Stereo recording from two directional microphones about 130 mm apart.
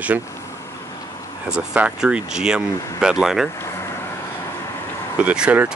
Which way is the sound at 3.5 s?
20° left (ahead or behind).